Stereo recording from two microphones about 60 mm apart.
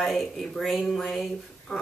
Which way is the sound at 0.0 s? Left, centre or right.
Centre.